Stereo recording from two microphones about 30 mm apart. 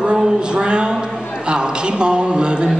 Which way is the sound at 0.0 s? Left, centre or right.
Right.